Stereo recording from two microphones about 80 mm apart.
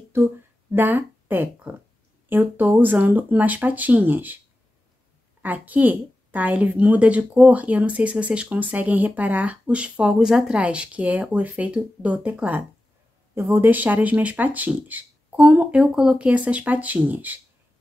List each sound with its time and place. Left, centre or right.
0.1 s speech: right
5.4 s a woman's voice: right